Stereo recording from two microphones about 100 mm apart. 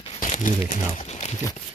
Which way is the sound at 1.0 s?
90° left.